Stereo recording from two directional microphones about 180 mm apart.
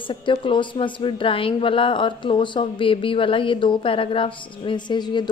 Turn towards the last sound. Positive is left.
turn(degrees=25)  # may be behind; listen again after turning